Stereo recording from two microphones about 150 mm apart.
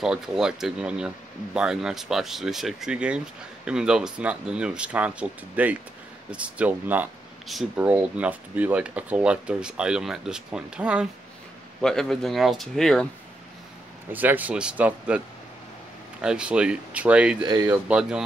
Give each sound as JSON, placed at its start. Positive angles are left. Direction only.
{"t": 0.0, "sound": "speech", "side_deg": -5}
{"t": 14.1, "sound": "speech", "side_deg": -10}
{"t": 17.4, "sound": "speech", "side_deg": -25}
{"t": 17.8, "sound": "speech", "side_deg": -5}